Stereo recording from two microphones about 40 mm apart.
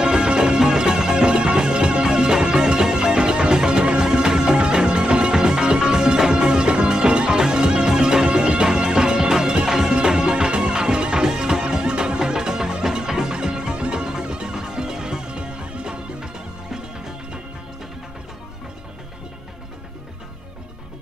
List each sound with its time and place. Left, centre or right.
0.0 s music: centre